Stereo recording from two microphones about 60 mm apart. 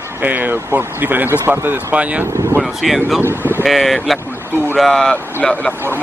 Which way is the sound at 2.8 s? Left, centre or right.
Centre.